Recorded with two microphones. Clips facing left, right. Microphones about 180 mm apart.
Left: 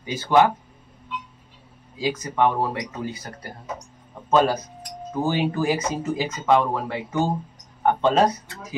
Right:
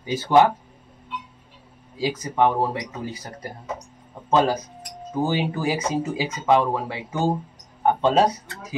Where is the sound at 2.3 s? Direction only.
20° right (ahead or behind).